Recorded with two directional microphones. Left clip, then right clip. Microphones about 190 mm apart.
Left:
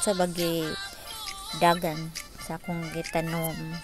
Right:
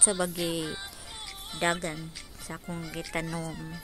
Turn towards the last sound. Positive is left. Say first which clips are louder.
# left 5 dB
turn(degrees=5)  # may be behind; listen again after turning